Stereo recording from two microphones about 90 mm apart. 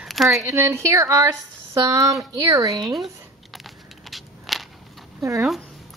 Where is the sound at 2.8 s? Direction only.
Centre (ahead or behind).